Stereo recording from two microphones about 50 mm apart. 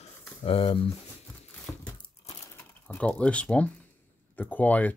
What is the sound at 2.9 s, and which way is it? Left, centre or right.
Speech, left.